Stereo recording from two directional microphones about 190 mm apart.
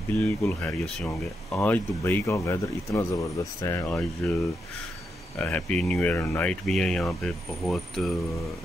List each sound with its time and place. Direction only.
0.1 s speech: 5° left (ahead or behind)
5.4 s speech: 5° left (ahead or behind)